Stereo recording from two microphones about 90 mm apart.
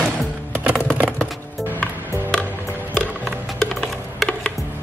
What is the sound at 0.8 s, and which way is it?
Typing, 20° right (ahead or behind).